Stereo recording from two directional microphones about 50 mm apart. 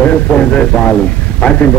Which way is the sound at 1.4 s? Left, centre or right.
Left.